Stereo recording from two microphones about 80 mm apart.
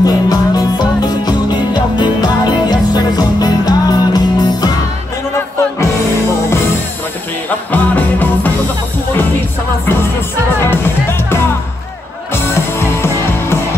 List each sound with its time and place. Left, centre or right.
0.0 s music: left
7.7 s music: left
10.6 s music: left
12.7 s music: left